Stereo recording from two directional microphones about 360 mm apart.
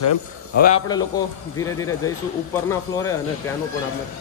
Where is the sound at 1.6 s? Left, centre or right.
Centre.